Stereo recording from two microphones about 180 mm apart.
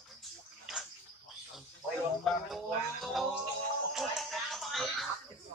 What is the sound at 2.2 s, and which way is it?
Music, centre (ahead or behind).